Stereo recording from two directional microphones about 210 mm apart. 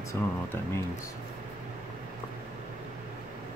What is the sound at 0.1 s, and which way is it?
Speech, 10° left (ahead or behind).